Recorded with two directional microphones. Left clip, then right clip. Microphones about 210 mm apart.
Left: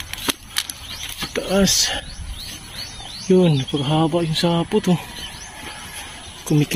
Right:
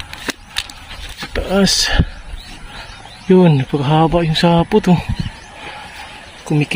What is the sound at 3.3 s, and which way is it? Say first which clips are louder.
Speech: right 5 dB; 40° right (ahead or behind).